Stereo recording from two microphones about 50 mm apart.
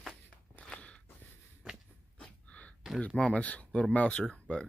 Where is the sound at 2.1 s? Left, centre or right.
Left.